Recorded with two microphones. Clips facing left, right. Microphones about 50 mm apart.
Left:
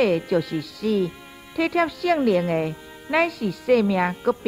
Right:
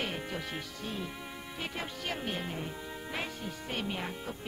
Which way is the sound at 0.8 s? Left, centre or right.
Left.